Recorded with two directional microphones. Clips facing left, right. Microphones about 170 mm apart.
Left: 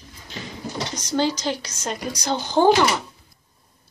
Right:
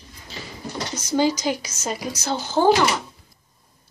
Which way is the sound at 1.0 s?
10° right (ahead or behind).